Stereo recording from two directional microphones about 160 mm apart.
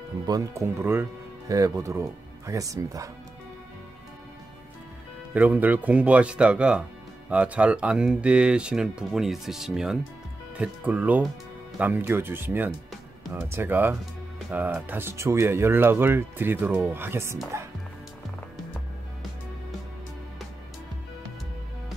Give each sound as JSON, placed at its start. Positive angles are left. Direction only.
{"t": 0.3, "sound": "speech", "side_deg": -20}
{"t": 5.3, "sound": "speech", "side_deg": -10}